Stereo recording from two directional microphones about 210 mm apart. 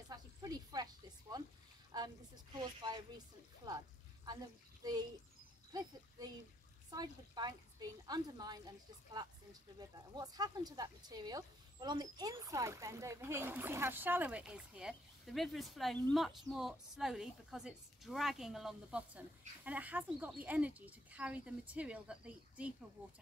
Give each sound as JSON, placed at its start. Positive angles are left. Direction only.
{"t": 0.1, "sound": "snake", "side_deg": -20}
{"t": 1.9, "sound": "speech", "side_deg": -20}